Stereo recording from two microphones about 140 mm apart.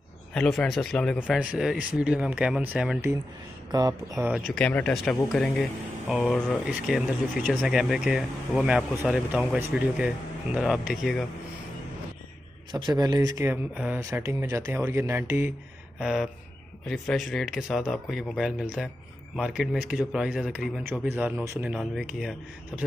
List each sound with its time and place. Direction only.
0.3 s speech: 5° left (ahead or behind)
1.3 s speech: 5° right (ahead or behind)
4.2 s speech: 5° right (ahead or behind)
4.6 s speech: 10° left (ahead or behind)
12.7 s a man's voice: 30° right (ahead or behind)
13.4 s speech: 15° right (ahead or behind)